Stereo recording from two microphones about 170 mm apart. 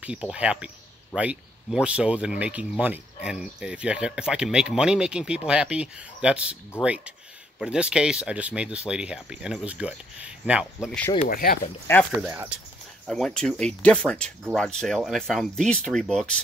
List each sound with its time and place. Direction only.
0.0 s speech: 5° right (ahead or behind)
11.0 s speech: 10° left (ahead or behind)
11.2 s speech: 60° left (ahead or behind)
12.3 s speech: 10° right (ahead or behind)
13.0 s speech: centre (ahead or behind)